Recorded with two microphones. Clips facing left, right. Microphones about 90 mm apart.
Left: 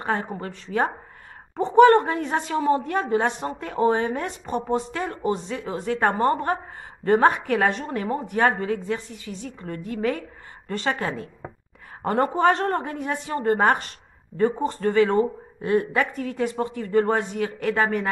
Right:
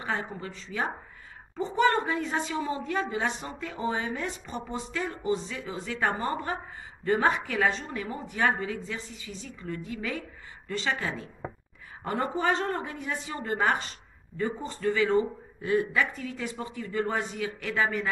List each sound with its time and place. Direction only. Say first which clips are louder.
0.0 s a woman's voice: left 6 dB; 50° left (ahead or behind)